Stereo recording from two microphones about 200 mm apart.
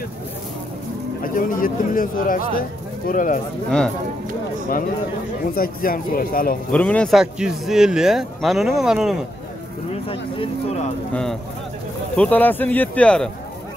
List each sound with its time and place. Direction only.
1.2 s speech: 45° left (ahead or behind)
5.5 s speech: 45° left (ahead or behind)
6.7 s speech: 5° left (ahead or behind)
10.0 s speech: 25° left (ahead or behind)
12.2 s speech: 10° left (ahead or behind)